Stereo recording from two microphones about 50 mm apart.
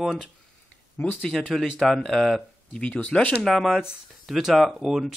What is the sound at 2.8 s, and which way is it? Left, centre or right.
Speech, left.